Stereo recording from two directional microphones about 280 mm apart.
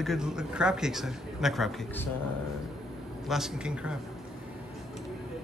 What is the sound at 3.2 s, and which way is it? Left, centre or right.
Speech, centre.